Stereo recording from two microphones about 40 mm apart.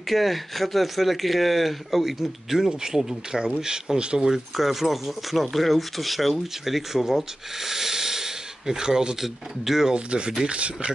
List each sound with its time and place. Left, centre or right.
0.1 s speech: centre; by 4.3 s right
4.3 s speech: centre
9.9 s speech: right